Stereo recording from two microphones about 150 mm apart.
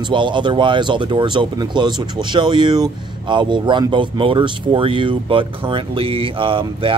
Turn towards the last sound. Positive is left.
turn(degrees=-35)  # may be behind; listen again after turning